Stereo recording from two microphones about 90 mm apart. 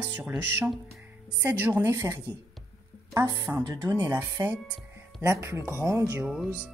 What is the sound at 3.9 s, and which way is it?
Speech, 25° right (ahead or behind).